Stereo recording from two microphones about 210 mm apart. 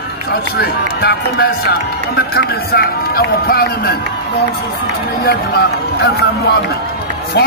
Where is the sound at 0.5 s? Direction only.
50° left (ahead or behind).